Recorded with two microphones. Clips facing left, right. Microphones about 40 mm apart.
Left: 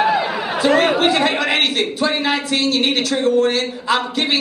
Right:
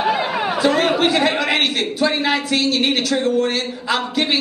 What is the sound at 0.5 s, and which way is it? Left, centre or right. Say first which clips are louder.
A man's voice: left 2 dB; centre.